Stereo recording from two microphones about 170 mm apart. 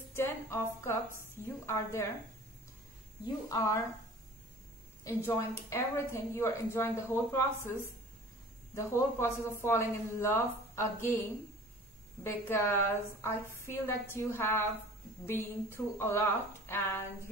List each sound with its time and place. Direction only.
0.1 s a sound: 15° left (ahead or behind)
1.4 s speech: 15° left (ahead or behind)
3.3 s a woman's voice: 20° left (ahead or behind)
5.0 s speech: 15° left (ahead or behind)
12.2 s speech: 15° left (ahead or behind)